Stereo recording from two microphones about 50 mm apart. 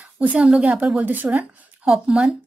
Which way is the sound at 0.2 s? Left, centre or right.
Right.